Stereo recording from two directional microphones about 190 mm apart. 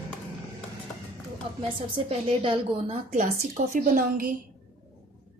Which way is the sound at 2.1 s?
30° right (ahead or behind).